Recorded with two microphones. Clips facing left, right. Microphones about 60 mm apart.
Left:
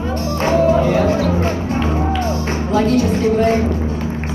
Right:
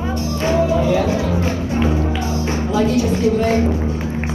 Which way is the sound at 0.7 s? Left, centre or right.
Left.